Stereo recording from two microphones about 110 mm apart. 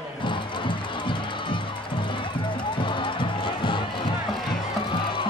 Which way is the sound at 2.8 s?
50° left (ahead or behind).